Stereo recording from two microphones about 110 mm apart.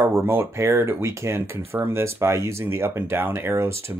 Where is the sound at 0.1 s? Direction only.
20° right (ahead or behind).